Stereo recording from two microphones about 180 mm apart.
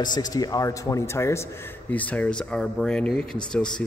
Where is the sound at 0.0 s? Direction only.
20° left (ahead or behind).